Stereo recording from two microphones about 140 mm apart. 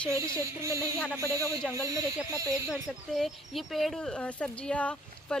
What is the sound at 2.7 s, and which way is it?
Speech, centre (ahead or behind).